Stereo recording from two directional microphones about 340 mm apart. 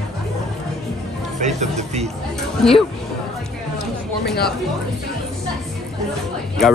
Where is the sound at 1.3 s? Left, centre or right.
Right.